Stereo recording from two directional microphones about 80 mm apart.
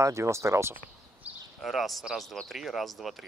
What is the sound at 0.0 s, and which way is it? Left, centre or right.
Speech, right.